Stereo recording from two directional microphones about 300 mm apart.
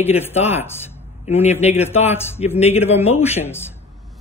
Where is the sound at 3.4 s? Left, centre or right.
Centre.